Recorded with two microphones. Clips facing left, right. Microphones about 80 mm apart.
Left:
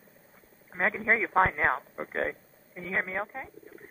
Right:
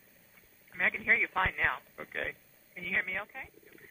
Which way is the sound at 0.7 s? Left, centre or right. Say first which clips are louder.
Left 4 dB; left.